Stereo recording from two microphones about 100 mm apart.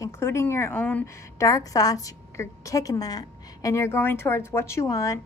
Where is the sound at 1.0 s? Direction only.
35° left (ahead or behind).